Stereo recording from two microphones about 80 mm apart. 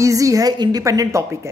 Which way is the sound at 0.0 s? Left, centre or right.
Right.